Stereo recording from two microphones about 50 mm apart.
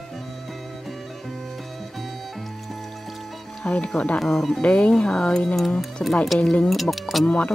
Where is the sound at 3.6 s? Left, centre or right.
Centre.